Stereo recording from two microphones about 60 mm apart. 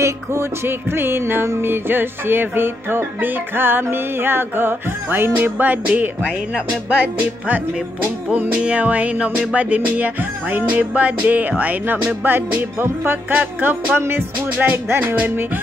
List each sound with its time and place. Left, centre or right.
0.0 s music: right
5.9 s music: right
8.3 s music: right
13.9 s music: right